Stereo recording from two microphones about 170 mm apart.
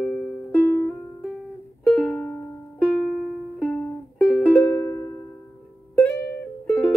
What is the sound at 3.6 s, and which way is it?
Music, 5° left (ahead or behind).